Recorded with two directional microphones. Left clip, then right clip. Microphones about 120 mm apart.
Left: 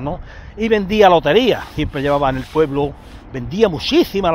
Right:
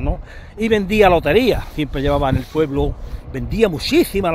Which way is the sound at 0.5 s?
40° right (ahead or behind).